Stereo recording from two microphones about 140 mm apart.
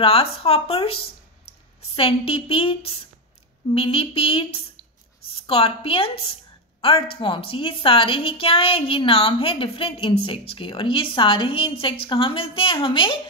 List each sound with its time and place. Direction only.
0.0 s a woman's voice: 45° left (ahead or behind)